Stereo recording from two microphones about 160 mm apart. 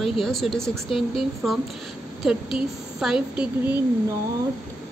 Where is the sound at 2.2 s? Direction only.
Centre (ahead or behind).